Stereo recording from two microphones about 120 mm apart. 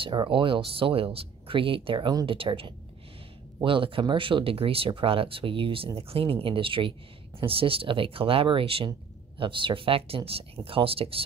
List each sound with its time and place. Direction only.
0.0 s speech: 45° right (ahead or behind)